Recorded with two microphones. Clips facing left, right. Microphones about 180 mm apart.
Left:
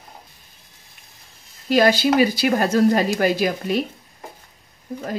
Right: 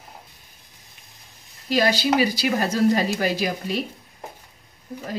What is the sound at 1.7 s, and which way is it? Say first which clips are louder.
A woman's voice: left 4 dB; 55° left (ahead or behind).